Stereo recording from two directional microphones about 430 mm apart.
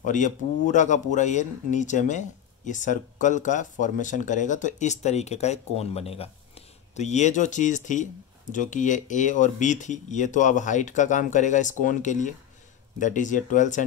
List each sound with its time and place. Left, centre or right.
0.0 s speech: centre